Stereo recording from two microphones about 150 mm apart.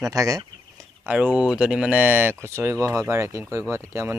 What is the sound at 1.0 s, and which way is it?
Speech, 10° right (ahead or behind).